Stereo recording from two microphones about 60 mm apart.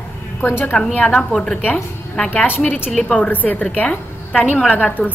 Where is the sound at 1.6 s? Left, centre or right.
Left.